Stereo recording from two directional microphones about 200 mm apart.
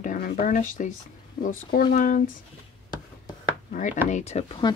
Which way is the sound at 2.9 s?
20° left (ahead or behind).